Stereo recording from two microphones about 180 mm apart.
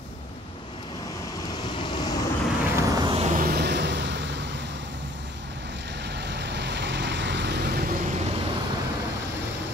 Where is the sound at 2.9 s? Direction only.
25° right (ahead or behind).